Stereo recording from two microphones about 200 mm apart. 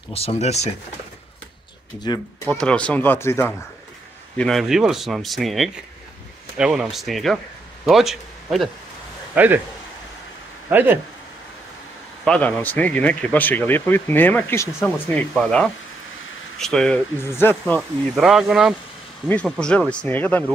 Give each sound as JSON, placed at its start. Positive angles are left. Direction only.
{"t": 0.1, "sound": "speech", "side_deg": 30}
{"t": 2.1, "sound": "speech", "side_deg": 20}
{"t": 2.5, "sound": "speech", "side_deg": 5}
{"t": 4.4, "sound": "a man's voice", "side_deg": 0}
{"t": 10.7, "sound": "speech", "side_deg": -10}
{"t": 12.3, "sound": "speech", "side_deg": 5}
{"t": 15.3, "sound": "speech", "side_deg": 5}
{"t": 17.7, "sound": "speech", "side_deg": -5}